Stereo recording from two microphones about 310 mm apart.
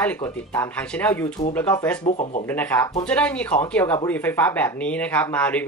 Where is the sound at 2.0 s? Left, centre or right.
Left.